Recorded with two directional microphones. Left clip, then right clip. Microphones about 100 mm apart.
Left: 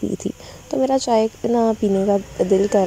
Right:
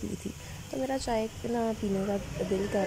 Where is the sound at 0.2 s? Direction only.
40° left (ahead or behind).